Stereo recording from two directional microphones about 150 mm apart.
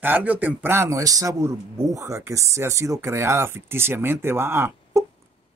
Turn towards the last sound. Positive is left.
turn(degrees=-15)  # may be behind; listen again after turning